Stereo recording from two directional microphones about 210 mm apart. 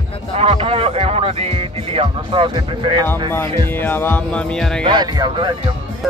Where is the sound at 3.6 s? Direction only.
10° left (ahead or behind).